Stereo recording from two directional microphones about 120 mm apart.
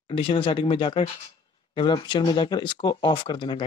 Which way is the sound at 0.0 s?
45° left (ahead or behind).